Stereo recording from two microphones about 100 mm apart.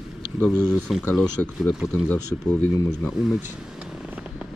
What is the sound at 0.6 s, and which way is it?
Speech, 10° right (ahead or behind).